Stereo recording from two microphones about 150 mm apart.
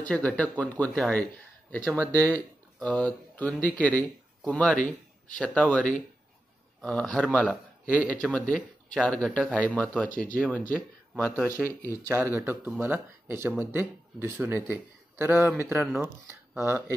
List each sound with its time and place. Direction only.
0.0 s a man's voice: 10° left (ahead or behind)
10.0 s speech: 65° left (ahead or behind)
10.3 s speech: 10° left (ahead or behind)
11.3 s a man's voice: 10° right (ahead or behind)